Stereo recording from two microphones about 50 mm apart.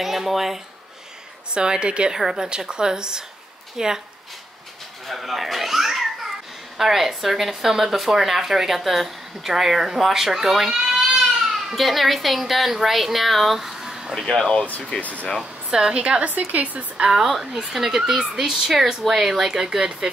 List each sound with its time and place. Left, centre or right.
0.0 s speech: centre
1.5 s a woman's voice: centre
2.1 s speech: centre
2.4 s speech: centre
5.0 s babbling: centre
6.8 s speech: centre
14.1 s speech: centre
15.0 s speech: left
15.7 s speech: centre
16.3 s a woman's voice: right
17.2 s speech: centre